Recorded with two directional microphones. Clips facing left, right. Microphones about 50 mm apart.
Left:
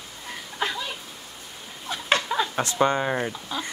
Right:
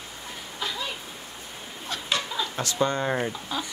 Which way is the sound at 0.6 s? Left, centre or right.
Left.